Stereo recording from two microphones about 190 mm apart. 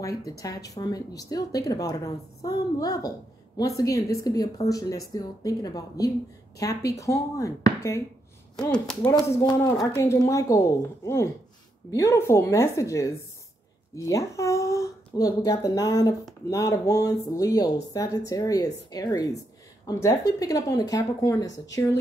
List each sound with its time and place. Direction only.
0.0 s speech: 15° left (ahead or behind)
9.4 s speech: 15° left (ahead or behind)